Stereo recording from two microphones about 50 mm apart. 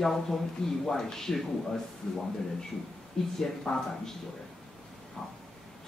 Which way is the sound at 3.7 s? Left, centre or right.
Centre.